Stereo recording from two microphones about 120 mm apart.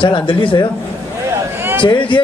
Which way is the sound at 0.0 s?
45° left (ahead or behind).